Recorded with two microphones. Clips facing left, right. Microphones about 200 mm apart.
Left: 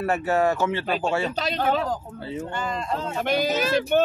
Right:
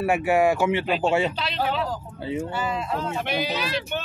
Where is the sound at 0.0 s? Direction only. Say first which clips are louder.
Right 2 dB; 10° right (ahead or behind).